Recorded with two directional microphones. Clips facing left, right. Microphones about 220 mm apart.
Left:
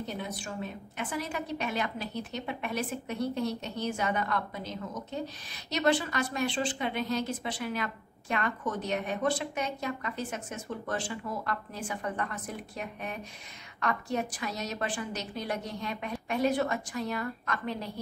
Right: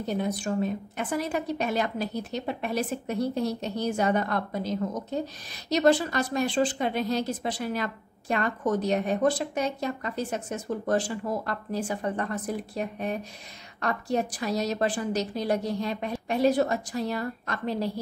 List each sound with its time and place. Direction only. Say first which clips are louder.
0.2 s a woman's voice: right 9 dB; 40° right (ahead or behind)